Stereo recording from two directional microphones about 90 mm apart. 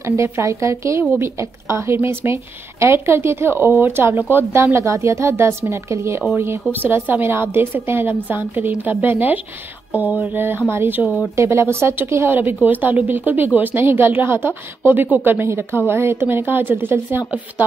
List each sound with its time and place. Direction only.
0.0 s a woman's voice: 30° right (ahead or behind)